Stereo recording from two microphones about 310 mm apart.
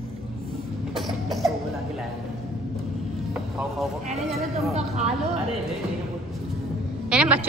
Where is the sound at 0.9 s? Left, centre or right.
Centre.